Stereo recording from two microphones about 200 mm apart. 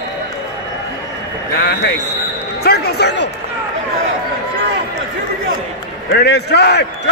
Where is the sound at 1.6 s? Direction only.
60° left (ahead or behind).